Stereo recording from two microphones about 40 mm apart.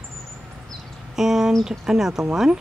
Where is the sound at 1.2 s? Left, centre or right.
Centre.